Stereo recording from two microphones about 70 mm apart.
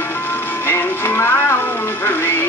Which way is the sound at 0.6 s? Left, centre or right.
Left.